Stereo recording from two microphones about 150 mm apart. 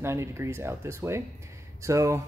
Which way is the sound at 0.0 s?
20° right (ahead or behind).